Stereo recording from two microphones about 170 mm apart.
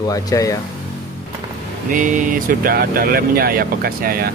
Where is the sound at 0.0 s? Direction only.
20° left (ahead or behind).